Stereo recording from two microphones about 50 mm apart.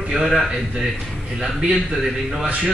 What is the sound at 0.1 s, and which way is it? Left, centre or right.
Speech, centre.